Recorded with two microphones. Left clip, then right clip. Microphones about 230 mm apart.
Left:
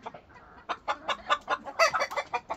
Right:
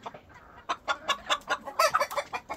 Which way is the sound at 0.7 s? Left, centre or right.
Right.